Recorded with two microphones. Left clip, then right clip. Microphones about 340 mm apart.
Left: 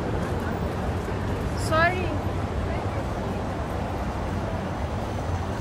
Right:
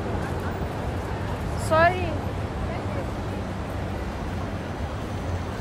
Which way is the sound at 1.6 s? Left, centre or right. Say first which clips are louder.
Right 3 dB; right.